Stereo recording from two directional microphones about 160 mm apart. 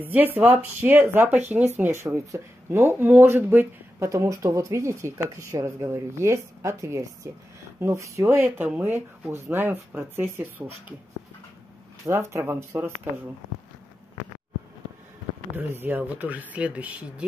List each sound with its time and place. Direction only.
0.0 s speech: 10° right (ahead or behind)
12.1 s speech: 15° right (ahead or behind)
15.5 s speech: 10° right (ahead or behind)